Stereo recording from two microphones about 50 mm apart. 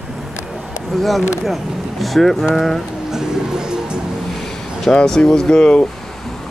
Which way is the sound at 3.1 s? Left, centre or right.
Centre.